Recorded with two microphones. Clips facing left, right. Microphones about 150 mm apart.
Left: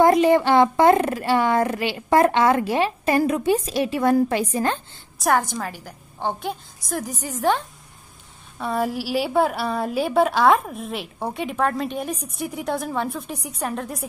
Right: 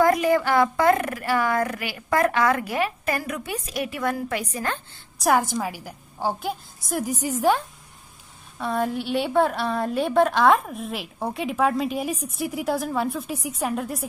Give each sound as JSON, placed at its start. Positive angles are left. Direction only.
{"t": 0.0, "sound": "a child's voice", "side_deg": 25}
{"t": 5.2, "sound": "a woman's voice", "side_deg": -5}